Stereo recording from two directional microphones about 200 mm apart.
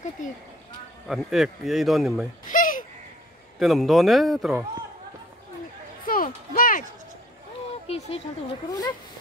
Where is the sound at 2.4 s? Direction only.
40° left (ahead or behind).